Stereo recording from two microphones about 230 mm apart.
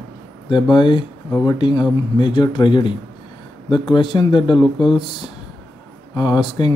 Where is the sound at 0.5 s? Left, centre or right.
Centre.